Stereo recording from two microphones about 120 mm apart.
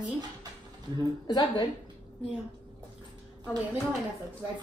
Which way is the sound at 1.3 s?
35° left (ahead or behind).